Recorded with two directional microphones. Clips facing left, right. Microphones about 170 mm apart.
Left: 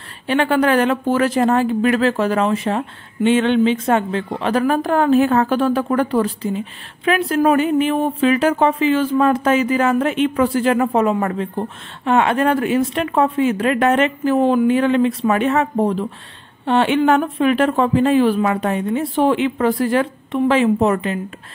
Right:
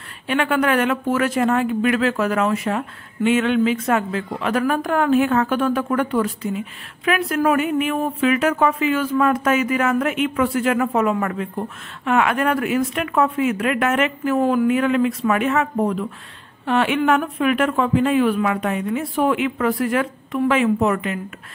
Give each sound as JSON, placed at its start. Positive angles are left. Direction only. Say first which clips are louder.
{"t": 0.3, "sound": "speech", "louder": "left 3 dB", "side_deg": 35}